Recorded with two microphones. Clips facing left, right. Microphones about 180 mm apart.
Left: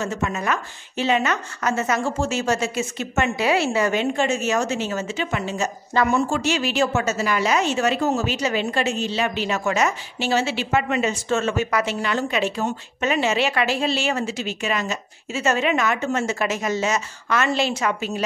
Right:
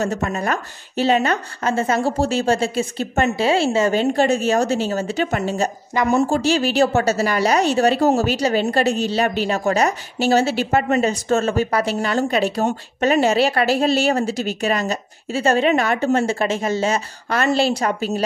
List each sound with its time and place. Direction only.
0.0 s a woman's voice: 40° right (ahead or behind)